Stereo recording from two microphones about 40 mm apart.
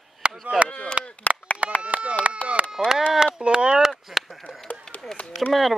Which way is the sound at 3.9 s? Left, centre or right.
Centre.